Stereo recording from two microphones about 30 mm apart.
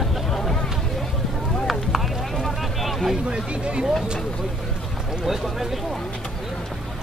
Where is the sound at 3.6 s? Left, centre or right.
Right.